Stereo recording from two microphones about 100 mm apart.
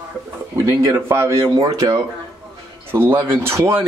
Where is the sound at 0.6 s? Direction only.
30° right (ahead or behind).